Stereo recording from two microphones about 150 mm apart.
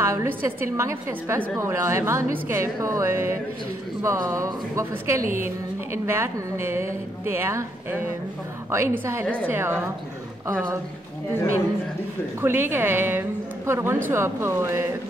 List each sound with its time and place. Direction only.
0.0 s speech: 15° right (ahead or behind)
5.2 s a woman's voice: 65° right (ahead or behind)
6.0 s a woman's voice: 15° right (ahead or behind)
12.4 s speech: 15° right (ahead or behind)